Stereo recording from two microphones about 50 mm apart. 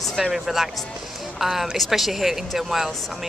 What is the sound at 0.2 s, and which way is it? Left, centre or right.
Speech, centre.